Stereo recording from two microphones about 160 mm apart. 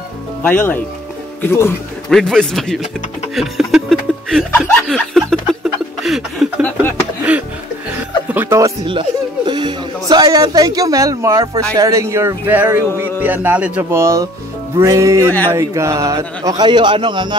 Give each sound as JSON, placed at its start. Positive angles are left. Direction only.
{"t": 0.4, "sound": "speech", "side_deg": 10}
{"t": 2.0, "sound": "a man's voice", "side_deg": 0}
{"t": 3.3, "sound": "chuckle", "side_deg": 0}
{"t": 4.6, "sound": "a sound", "side_deg": 5}
{"t": 7.3, "sound": "music", "side_deg": -5}
{"t": 8.3, "sound": "speech", "side_deg": -15}
{"t": 9.5, "sound": "speech", "side_deg": -25}